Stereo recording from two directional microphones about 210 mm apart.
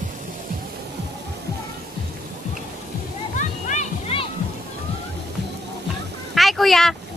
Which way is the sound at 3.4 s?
35° left (ahead or behind).